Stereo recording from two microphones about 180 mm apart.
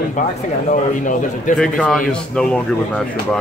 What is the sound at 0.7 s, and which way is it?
Speech, 45° left (ahead or behind).